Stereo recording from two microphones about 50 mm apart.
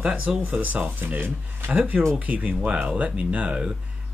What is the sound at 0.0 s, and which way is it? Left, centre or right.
Speech, right.